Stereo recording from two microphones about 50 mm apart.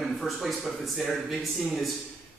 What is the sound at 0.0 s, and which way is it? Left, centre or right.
Speech, centre.